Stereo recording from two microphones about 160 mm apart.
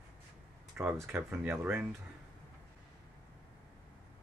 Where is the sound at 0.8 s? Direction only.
10° right (ahead or behind).